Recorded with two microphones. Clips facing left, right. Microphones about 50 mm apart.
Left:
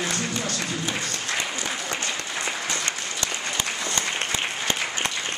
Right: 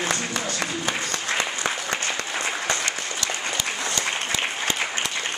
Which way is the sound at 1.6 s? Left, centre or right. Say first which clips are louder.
Right 4 dB; right.